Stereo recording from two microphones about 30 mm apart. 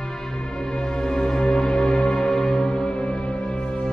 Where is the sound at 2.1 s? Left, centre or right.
Centre.